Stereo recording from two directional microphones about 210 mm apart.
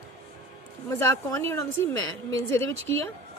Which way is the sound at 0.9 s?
15° left (ahead or behind).